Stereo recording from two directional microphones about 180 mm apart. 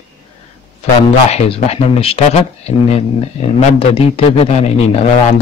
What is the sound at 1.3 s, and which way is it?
Speech, 35° left (ahead or behind).